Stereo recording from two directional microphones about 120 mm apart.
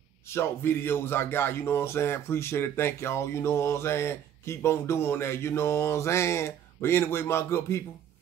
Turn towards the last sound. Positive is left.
turn(degrees=20)  # may be behind; listen again after turning